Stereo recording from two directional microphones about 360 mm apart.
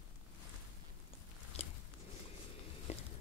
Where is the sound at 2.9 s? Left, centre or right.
Centre.